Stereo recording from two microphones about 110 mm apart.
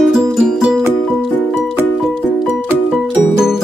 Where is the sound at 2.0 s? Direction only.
5° right (ahead or behind).